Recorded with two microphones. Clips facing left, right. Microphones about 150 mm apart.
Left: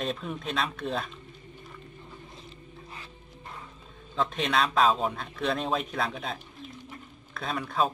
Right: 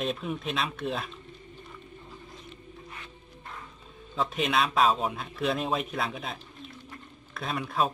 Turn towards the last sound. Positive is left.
turn(degrees=0)  # may be behind; listen again after turning